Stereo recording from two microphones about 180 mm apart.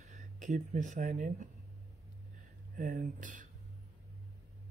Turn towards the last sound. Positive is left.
turn(degrees=-45)  # may be behind; listen again after turning